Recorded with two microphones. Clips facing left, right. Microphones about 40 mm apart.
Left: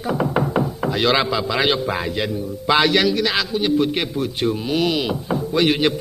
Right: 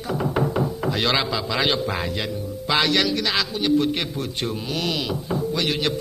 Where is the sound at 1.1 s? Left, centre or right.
Centre.